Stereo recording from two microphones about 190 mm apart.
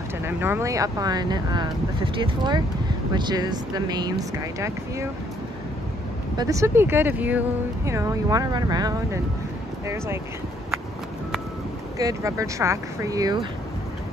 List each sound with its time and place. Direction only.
0.2 s speech: 10° right (ahead or behind)
6.3 s speech: 20° right (ahead or behind)
12.0 s speech: 15° right (ahead or behind)